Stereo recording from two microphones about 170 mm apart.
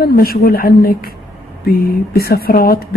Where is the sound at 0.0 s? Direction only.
60° left (ahead or behind).